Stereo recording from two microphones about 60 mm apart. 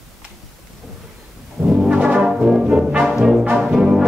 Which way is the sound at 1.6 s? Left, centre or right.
Centre.